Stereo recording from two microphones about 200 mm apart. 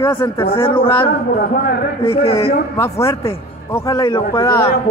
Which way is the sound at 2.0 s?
30° left (ahead or behind).